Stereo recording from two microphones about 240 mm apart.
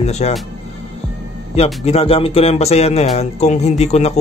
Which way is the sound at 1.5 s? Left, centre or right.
Left.